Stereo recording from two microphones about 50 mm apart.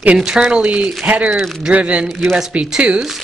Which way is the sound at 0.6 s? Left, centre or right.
Right.